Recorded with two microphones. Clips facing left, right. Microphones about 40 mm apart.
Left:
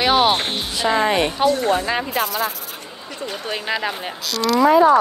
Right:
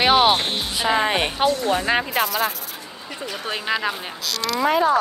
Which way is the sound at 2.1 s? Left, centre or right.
Centre.